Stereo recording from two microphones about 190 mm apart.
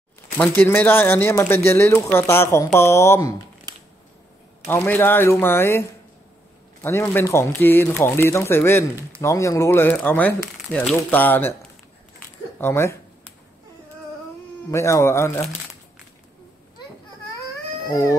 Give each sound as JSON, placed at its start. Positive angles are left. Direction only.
{"t": 0.4, "sound": "speech", "side_deg": 10}
{"t": 3.7, "sound": "a sound", "side_deg": -20}
{"t": 4.6, "sound": "speech", "side_deg": 10}
{"t": 12.5, "sound": "speech", "side_deg": 15}
{"t": 14.7, "sound": "speech", "side_deg": 15}
{"t": 17.8, "sound": "a sound", "side_deg": 15}